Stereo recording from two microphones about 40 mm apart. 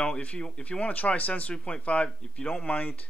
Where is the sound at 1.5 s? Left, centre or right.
Left.